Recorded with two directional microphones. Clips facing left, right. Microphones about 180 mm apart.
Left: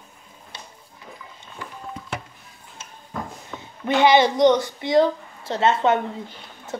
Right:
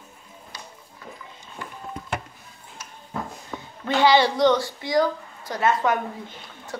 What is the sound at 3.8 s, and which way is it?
A woman's voice, 20° left (ahead or behind).